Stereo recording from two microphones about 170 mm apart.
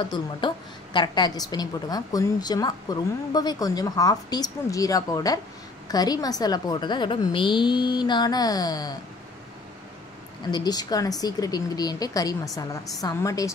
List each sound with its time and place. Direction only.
0.4 s a woman's voice: 25° left (ahead or behind)
10.5 s a woman's voice: 25° left (ahead or behind)